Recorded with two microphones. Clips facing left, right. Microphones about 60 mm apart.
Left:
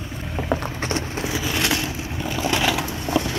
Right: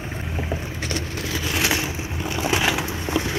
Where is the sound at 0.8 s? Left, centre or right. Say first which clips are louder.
Left 2 dB; left.